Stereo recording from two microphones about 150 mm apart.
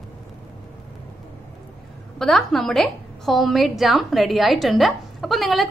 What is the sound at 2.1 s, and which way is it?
A woman's voice, centre (ahead or behind).